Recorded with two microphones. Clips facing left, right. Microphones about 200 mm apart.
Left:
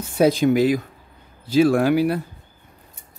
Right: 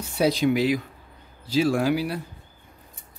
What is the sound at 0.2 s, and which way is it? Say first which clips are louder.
Speech: left 5 dB; 50° left (ahead or behind).